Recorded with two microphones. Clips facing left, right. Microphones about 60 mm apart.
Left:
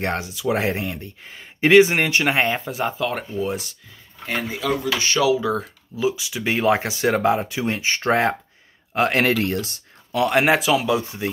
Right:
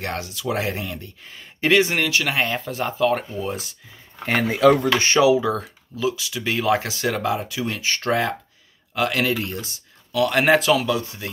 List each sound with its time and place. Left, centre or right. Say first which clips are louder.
0.0 s speech: left 4 dB; left
2.6 s speech: right 2 dB; centre
4.2 s speech: right 8 dB; right
4.9 s a sound: right 4 dB; right
5.4 s speech: even; centre
5.9 s a man's voice: left 1 dB; centre
9.2 s speech: left 4 dB; left
10.1 s speech: left 1 dB; left
10.4 s speech: right 1 dB; centre
11.0 s speech: left 1 dB; left